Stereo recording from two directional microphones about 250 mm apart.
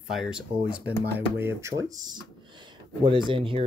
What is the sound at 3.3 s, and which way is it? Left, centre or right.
Speech, right.